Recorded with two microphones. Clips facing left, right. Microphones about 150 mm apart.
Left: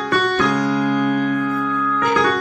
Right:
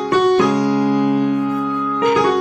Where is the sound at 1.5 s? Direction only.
20° right (ahead or behind).